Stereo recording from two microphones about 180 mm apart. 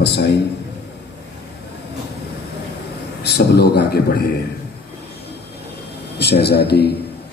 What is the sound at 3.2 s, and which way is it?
A man's voice, 65° left (ahead or behind).